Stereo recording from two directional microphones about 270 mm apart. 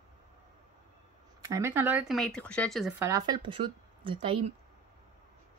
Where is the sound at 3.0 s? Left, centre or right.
Centre.